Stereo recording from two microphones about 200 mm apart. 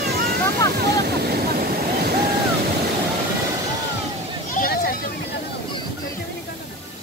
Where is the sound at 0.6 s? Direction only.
55° right (ahead or behind).